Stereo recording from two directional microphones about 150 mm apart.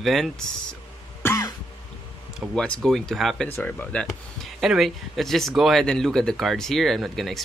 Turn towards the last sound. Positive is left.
turn(degrees=0)  # may be behind; listen again after turning